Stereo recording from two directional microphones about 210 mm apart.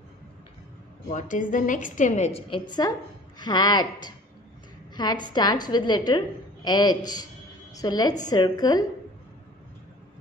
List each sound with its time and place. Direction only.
1.1 s a woman's voice: 35° left (ahead or behind); by 8.8 s 20° left (ahead or behind)